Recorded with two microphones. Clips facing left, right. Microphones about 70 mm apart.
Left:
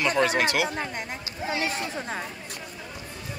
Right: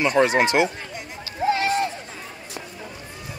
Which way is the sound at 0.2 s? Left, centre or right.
Right.